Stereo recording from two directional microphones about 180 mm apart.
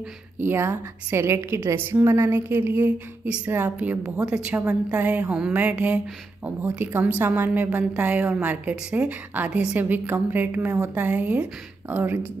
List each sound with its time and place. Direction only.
0.4 s a woman's voice: 15° right (ahead or behind)